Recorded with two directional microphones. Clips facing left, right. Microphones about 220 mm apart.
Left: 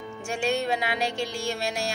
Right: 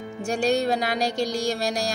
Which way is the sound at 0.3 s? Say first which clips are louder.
Right 4 dB; 40° right (ahead or behind).